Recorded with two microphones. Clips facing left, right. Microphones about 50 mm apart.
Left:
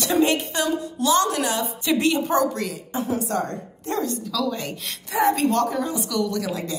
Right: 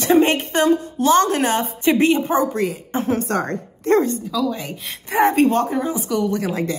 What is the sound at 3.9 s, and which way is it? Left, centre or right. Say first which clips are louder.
A woman's voice: right 9 dB; right.